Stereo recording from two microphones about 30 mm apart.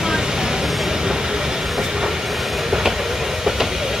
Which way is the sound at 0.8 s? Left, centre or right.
Centre.